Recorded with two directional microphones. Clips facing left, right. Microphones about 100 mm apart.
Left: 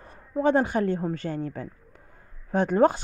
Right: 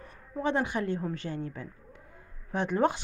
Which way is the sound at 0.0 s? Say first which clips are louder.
Left 8 dB; 40° left (ahead or behind).